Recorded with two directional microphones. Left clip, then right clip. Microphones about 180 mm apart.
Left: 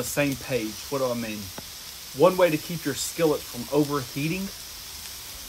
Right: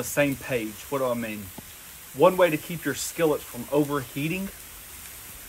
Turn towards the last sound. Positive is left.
turn(degrees=5)  # may be behind; listen again after turning